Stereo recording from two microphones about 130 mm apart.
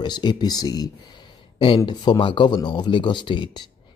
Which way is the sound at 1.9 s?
35° left (ahead or behind).